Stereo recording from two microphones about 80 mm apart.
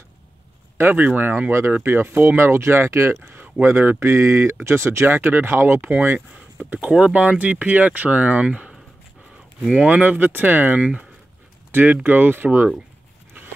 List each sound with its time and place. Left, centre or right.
0.7 s speech: right